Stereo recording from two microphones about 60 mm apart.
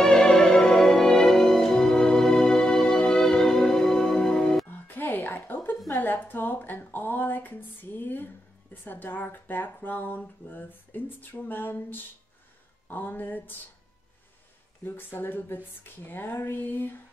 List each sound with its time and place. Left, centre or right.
0.0 s music: centre
4.6 s music: left
5.9 s speech: left
14.9 s speech: left